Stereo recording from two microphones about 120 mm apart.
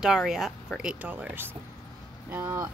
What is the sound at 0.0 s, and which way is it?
Speech, 5° right (ahead or behind).